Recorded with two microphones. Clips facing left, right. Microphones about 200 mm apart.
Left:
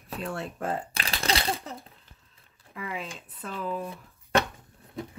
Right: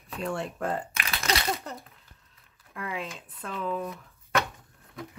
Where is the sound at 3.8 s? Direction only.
30° left (ahead or behind).